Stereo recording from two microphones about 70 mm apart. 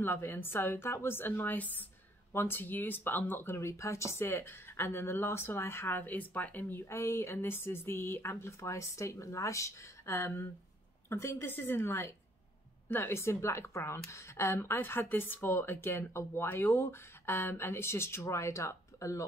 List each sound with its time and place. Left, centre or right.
0.0 s a woman's voice: left
6.9 s a woman's voice: left